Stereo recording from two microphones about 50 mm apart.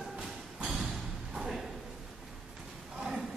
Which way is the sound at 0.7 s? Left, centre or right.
Centre.